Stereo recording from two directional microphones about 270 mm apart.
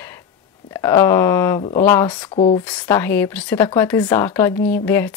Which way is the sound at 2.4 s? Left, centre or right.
Left.